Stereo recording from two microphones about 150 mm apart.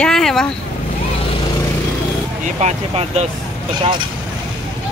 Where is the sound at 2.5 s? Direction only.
45° right (ahead or behind).